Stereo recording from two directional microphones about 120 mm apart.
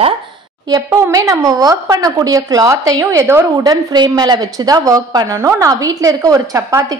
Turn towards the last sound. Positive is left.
turn(degrees=-25)  # may be behind; listen again after turning